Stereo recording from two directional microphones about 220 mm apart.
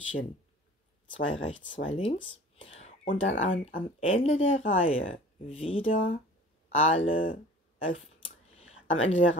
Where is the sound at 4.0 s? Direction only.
25° left (ahead or behind).